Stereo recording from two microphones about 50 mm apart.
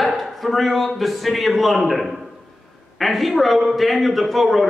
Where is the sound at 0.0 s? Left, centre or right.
Centre.